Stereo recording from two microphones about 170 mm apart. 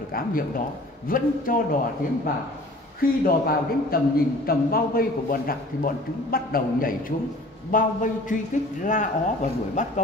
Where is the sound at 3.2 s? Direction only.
60° left (ahead or behind).